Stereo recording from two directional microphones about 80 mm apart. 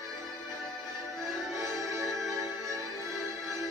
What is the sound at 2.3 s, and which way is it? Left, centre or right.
Music, right.